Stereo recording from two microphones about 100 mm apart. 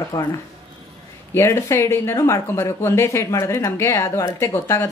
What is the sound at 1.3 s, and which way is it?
Speech, 25° left (ahead or behind).